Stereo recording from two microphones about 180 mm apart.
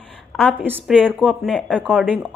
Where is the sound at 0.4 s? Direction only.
10° left (ahead or behind).